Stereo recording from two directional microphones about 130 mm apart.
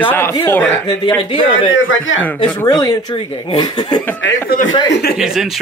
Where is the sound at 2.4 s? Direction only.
30° left (ahead or behind).